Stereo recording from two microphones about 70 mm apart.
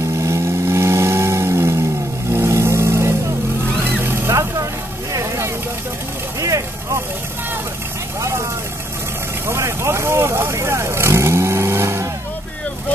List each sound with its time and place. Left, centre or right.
0.2 s vehicle: right
4.3 s vehicle: right
9.5 s vehicle: right